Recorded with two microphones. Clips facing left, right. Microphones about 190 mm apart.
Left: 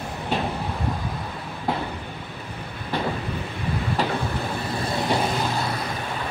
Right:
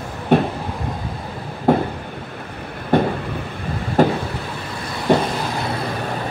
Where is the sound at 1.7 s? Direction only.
50° right (ahead or behind).